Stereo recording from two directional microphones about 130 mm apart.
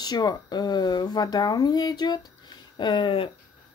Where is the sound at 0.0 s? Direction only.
30° left (ahead or behind).